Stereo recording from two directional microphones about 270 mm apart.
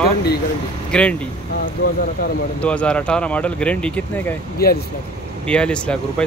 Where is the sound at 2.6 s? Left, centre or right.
Centre.